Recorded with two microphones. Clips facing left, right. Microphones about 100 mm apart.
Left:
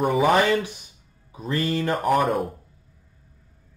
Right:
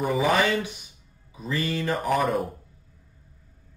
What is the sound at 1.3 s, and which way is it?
Speech, 40° left (ahead or behind).